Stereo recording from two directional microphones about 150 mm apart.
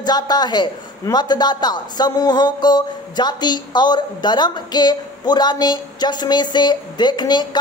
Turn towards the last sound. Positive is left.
turn(degrees=30)  # may be behind; listen again after turning